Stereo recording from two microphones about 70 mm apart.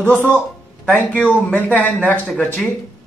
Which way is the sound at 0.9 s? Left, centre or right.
Left.